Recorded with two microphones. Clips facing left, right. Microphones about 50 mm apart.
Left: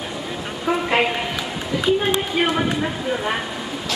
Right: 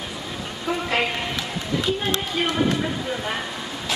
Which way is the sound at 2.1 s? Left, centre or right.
Centre.